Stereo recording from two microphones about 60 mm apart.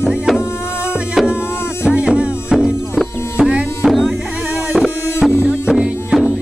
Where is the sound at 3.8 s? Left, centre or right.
Centre.